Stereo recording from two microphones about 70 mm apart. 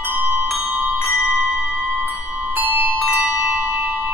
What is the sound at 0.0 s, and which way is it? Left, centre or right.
Music, right.